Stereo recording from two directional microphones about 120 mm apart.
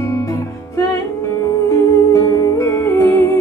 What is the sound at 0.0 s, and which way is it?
Music, 25° left (ahead or behind).